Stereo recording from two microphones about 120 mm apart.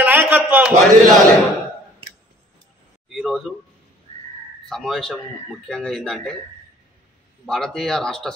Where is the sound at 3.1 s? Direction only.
Centre (ahead or behind).